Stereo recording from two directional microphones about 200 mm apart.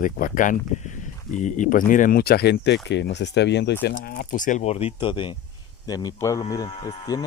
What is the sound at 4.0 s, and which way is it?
Speech, 45° left (ahead or behind).